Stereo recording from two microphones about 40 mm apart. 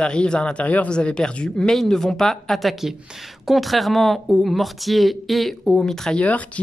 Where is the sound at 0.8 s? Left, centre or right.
Left.